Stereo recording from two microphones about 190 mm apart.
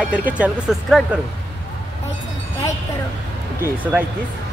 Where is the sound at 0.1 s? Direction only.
5° right (ahead or behind).